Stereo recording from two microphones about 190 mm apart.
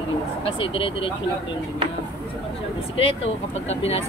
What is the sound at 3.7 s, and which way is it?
Speech, 35° left (ahead or behind).